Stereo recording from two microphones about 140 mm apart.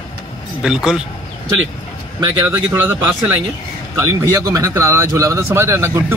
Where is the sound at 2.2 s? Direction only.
30° right (ahead or behind).